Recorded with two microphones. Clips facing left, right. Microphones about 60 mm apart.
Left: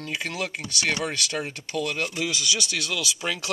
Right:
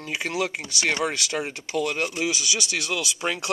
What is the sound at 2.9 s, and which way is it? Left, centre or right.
Speech, right.